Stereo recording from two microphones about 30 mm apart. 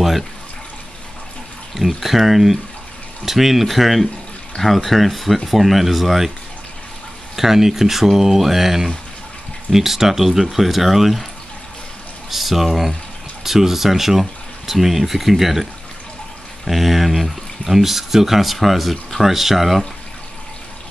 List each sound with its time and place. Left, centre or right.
1.8 s speech: centre
7.3 s speech: centre
12.3 s speech: centre